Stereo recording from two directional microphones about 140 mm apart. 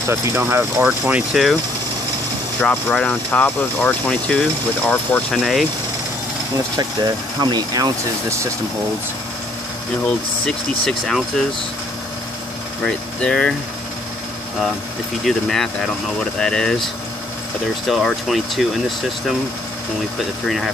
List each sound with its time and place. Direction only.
0.1 s speech: 20° right (ahead or behind); by 1.6 s centre (ahead or behind)
2.6 s speech: 5° left (ahead or behind)
5.4 s speech: centre (ahead or behind)
6.8 s speech: 30° right (ahead or behind)
10.4 s speech: 5° left (ahead or behind)
12.8 s speech: 5° left (ahead or behind)
15.2 s speech: centre (ahead or behind)
20.4 s speech: centre (ahead or behind)